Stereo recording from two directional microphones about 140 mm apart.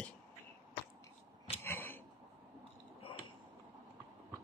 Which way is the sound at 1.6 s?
15° left (ahead or behind).